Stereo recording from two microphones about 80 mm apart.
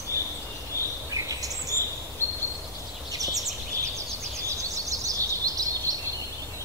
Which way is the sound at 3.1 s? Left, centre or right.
Right.